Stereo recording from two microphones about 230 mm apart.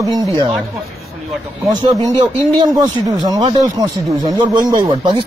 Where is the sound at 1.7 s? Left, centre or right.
Centre.